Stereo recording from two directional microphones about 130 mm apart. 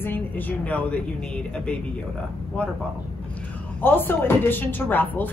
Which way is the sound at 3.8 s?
15° left (ahead or behind).